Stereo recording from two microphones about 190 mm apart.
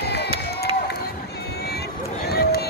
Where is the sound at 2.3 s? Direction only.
55° left (ahead or behind).